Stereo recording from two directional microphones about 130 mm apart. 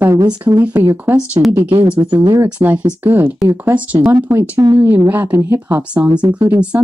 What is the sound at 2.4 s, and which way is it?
Speech, 10° right (ahead or behind).